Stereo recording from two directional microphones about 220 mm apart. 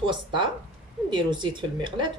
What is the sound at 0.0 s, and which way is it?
Speech, 20° right (ahead or behind).